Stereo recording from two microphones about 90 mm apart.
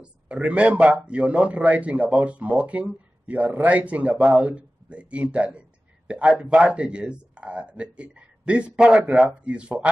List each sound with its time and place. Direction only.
0.0 s a man's voice: 10° right (ahead or behind)